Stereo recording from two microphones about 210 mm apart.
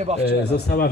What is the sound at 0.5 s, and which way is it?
Speech, 50° left (ahead or behind).